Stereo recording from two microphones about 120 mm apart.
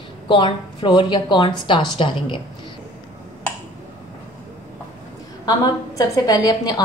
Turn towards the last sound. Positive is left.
turn(degrees=30)  # may be behind; listen again after turning